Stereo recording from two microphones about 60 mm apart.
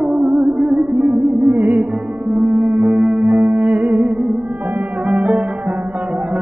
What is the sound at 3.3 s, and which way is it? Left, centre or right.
Music, right.